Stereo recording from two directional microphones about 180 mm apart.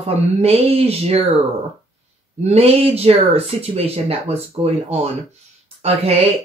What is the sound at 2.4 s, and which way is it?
Speech, 35° right (ahead or behind).